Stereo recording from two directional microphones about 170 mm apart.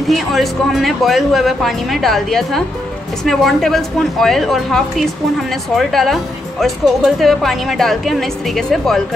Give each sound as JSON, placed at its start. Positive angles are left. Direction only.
{"t": 0.1, "sound": "speech", "side_deg": 0}